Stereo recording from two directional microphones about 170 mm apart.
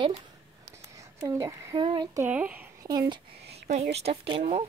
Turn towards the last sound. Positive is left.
turn(degrees=-30)  # may be behind; listen again after turning